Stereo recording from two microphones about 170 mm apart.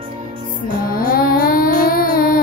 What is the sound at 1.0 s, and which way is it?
Child singing, 60° left (ahead or behind).